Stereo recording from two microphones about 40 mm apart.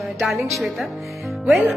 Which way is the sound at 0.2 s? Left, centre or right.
Centre.